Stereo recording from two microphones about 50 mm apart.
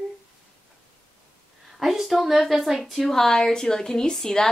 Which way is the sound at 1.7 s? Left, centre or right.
Centre.